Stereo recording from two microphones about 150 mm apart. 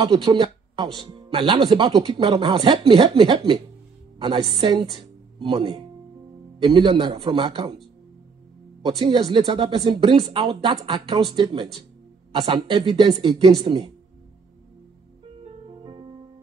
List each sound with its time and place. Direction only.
0.1 s speech: 30° right (ahead or behind)
8.8 s speech: 35° right (ahead or behind)
10.1 s speech: 45° right (ahead or behind)
10.4 s speech: 30° right (ahead or behind)
15.4 s music: 35° right (ahead or behind)